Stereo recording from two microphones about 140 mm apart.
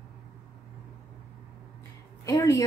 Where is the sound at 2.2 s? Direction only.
20° left (ahead or behind).